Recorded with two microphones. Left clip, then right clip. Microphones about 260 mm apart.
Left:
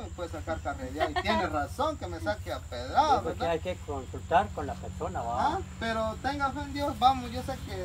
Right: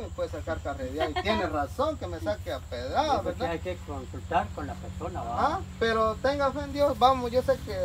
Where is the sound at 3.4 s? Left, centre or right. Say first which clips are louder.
Left 2 dB; left.